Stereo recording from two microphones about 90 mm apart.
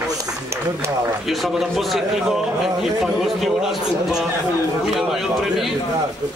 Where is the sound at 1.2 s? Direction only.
Centre (ahead or behind).